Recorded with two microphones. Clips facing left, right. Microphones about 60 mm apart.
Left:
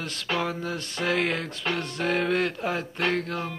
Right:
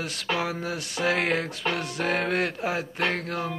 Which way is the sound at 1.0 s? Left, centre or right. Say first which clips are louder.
Right 1 dB; right.